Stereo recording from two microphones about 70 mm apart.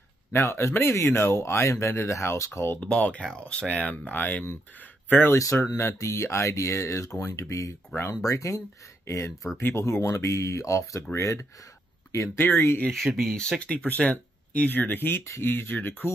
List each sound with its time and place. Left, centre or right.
0.3 s speech: left
2.8 s speech: centre
5.3 s speech: left
12.9 s speech: centre
13.4 s speech: centre; by 16.1 s left